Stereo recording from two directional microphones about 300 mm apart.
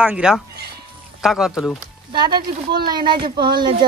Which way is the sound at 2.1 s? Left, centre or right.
Centre.